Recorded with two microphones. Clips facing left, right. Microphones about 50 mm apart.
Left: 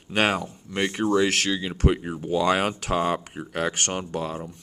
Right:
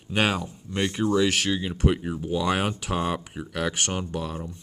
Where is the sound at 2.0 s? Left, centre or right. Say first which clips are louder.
Right 1 dB; centre.